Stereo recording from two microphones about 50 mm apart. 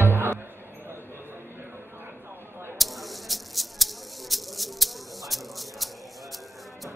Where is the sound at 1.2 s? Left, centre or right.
Right.